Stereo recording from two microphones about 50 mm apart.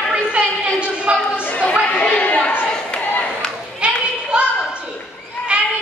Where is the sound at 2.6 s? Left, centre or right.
Left.